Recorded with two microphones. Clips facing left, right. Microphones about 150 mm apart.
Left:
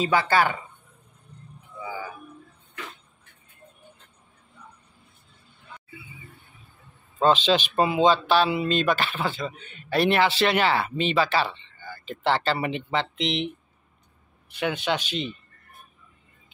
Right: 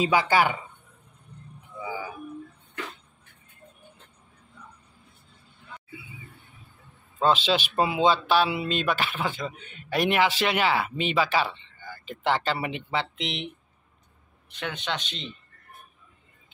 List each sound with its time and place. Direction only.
0.0 s speech: 15° right (ahead or behind)
1.8 s a sound: 15° right (ahead or behind)
7.2 s speech: 5° right (ahead or behind)
14.5 s speech: 10° left (ahead or behind)